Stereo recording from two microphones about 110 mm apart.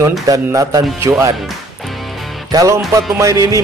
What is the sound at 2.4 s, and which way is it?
Speech, 35° right (ahead or behind).